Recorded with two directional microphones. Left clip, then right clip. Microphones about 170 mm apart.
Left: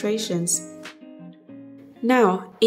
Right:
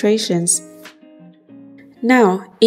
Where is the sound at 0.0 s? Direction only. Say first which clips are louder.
Right 8 dB; 25° right (ahead or behind).